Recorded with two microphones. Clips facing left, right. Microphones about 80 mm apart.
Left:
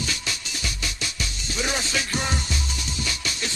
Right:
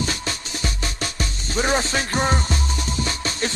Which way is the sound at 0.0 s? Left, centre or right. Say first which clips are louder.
Right 5 dB; right.